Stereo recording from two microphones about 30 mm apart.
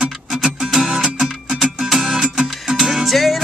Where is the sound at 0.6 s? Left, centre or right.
Centre.